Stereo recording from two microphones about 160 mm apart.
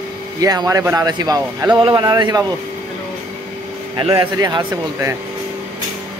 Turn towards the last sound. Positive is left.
turn(degrees=-25)  # may be behind; listen again after turning